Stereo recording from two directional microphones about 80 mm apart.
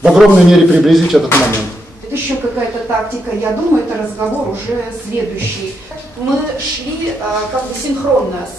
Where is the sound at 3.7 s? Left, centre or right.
Right.